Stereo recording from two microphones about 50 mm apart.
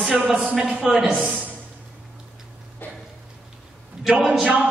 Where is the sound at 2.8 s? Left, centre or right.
Left.